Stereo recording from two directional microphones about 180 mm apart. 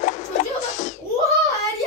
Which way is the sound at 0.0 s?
40° left (ahead or behind).